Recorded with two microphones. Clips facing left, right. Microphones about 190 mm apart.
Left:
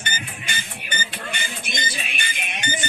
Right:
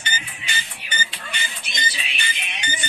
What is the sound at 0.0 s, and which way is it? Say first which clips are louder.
Music: left 1 dB; 50° left (ahead or behind).